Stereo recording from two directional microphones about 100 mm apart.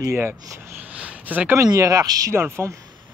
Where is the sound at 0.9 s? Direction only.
15° right (ahead or behind).